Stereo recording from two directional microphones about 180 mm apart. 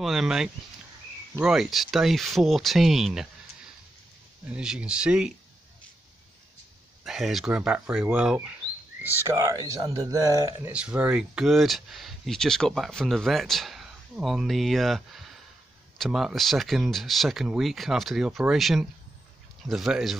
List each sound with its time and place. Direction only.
0.0 s speech: centre (ahead or behind)
4.6 s speech: 5° right (ahead or behind)
7.1 s speech: centre (ahead or behind)
9.2 s speech: 15° right (ahead or behind)
10.7 s speech: 5° right (ahead or behind)